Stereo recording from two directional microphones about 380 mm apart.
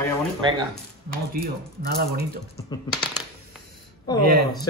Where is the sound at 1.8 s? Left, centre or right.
Right.